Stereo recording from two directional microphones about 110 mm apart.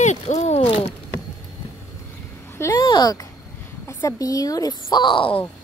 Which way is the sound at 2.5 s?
30° left (ahead or behind).